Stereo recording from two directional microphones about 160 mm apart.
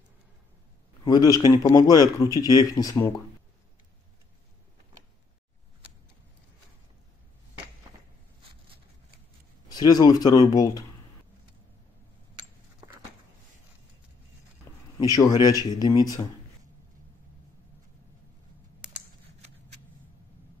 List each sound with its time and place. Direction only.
1.0 s a man's voice: 25° left (ahead or behind)
9.7 s a man's voice: 25° left (ahead or behind)
15.0 s a man's voice: 25° left (ahead or behind)